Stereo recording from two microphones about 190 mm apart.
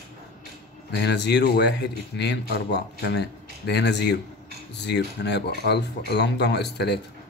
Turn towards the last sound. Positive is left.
turn(degrees=60)  # may be behind; listen again after turning